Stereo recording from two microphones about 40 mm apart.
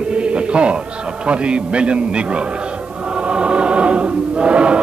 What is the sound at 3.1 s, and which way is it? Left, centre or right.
Choir, right.